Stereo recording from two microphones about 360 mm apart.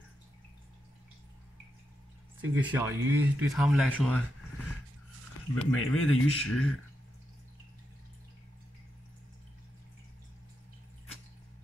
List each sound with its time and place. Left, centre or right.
2.4 s speech: centre
5.7 s speech: left